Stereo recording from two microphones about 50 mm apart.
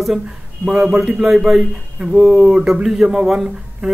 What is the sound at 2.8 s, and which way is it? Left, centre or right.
Speech, centre.